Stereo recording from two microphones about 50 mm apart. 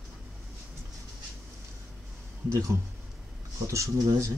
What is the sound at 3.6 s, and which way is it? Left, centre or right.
Speech, right.